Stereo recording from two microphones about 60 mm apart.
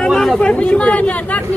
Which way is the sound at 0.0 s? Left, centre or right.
Centre.